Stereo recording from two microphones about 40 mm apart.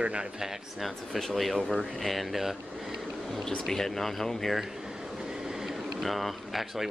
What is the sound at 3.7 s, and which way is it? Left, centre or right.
Speech, centre.